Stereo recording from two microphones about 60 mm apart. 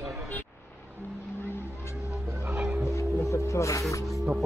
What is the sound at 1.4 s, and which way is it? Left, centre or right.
Vehicle, left.